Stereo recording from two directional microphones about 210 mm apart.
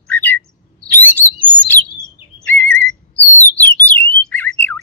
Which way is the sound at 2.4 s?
10° left (ahead or behind).